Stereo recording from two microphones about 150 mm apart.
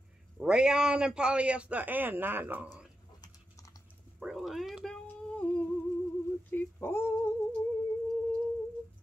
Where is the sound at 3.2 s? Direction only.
20° left (ahead or behind).